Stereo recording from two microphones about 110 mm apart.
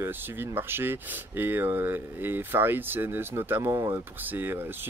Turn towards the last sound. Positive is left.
turn(degrees=-20)  # may be behind; listen again after turning